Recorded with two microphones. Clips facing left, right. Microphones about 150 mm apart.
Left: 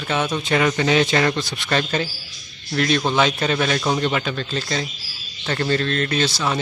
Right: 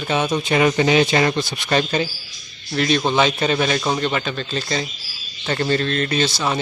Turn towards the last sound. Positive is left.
turn(degrees=-5)  # may be behind; listen again after turning